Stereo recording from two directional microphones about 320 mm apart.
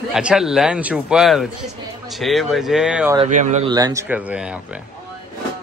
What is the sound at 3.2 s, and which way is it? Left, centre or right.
Speech, right.